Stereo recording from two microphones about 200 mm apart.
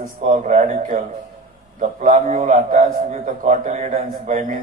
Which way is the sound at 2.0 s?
40° right (ahead or behind).